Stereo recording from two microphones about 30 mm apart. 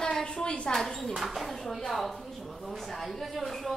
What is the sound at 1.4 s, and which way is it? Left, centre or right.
A woman's voice, centre.